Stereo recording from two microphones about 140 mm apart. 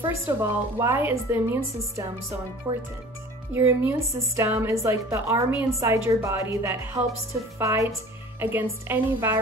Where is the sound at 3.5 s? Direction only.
15° right (ahead or behind).